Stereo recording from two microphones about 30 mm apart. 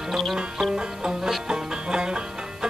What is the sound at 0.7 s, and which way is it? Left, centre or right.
Music, right.